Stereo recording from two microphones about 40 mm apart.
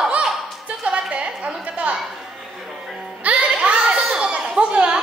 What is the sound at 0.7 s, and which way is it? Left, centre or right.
Music, right.